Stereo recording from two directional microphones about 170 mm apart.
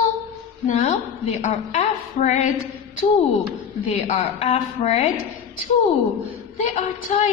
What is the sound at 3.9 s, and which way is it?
A woman's voice, 35° left (ahead or behind).